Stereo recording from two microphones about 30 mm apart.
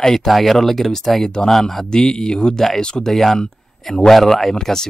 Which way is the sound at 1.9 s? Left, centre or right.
Left.